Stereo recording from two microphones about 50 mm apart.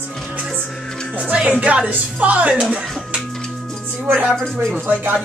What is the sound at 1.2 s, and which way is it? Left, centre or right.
Speech, right.